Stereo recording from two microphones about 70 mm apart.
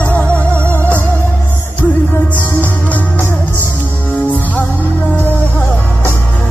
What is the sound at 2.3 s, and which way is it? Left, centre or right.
Music, left.